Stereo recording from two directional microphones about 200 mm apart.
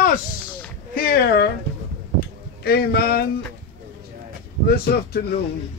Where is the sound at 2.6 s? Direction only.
50° left (ahead or behind).